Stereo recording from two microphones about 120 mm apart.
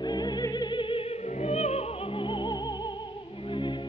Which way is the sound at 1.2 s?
65° left (ahead or behind).